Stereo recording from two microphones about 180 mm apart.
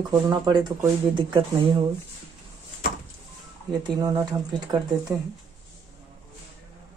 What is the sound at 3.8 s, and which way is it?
Speech, 20° right (ahead or behind).